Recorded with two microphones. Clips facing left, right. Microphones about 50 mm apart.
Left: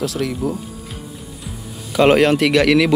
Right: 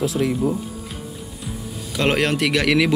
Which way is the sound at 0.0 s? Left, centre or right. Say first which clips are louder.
Right 1 dB; centre.